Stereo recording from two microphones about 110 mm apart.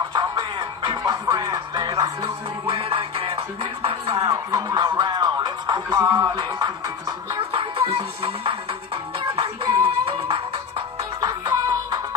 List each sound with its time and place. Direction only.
1.5 s music: 40° right (ahead or behind)
2.2 s music: 60° right (ahead or behind)
4.3 s music: 30° right (ahead or behind)
7.5 s music: 60° right (ahead or behind)
11.1 s music: 35° right (ahead or behind)